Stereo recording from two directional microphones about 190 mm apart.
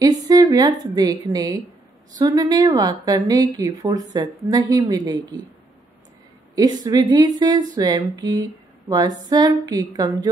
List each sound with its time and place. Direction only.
0.0 s a woman's voice: 20° right (ahead or behind)
6.5 s a woman's voice: 20° right (ahead or behind)